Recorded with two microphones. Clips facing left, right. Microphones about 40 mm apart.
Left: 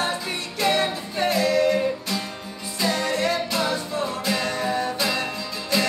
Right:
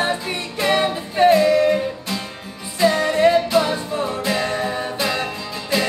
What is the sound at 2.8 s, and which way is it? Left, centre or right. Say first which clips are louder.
Music: right 8 dB; right.